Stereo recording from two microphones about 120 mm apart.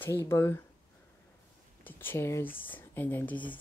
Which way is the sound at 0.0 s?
25° left (ahead or behind).